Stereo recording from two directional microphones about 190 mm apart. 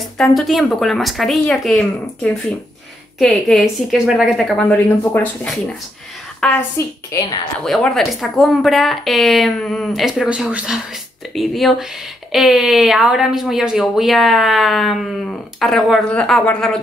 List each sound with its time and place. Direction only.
0.0 s speech: centre (ahead or behind)
3.2 s a woman's voice: centre (ahead or behind); by 7.3 s 20° left (ahead or behind)
7.5 s speech: 5° left (ahead or behind)